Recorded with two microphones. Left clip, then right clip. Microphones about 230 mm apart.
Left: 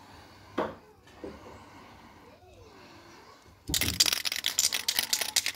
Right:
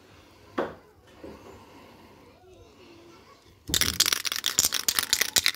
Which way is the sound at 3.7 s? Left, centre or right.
Right.